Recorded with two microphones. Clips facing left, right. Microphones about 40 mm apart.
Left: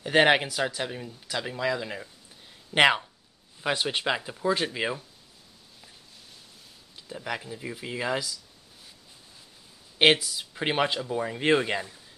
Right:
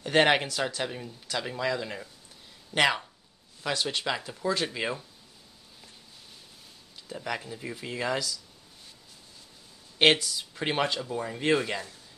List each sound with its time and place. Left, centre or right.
0.0 s speech: centre
2.7 s speech: left; by 5.0 s centre
7.1 s speech: centre
9.9 s speech: centre